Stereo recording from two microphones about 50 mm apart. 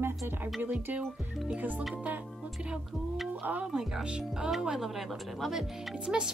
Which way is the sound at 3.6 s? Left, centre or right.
Centre.